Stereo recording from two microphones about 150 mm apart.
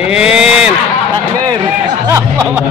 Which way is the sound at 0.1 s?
5° right (ahead or behind).